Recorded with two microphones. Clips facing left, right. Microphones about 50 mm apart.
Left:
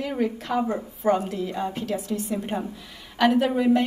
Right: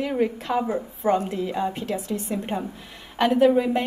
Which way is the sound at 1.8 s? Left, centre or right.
Right.